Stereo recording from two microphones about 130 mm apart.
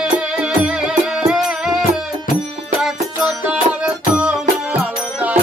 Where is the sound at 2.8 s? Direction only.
5° right (ahead or behind).